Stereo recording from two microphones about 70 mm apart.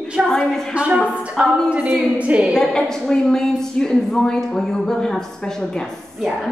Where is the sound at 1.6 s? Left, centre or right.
Right.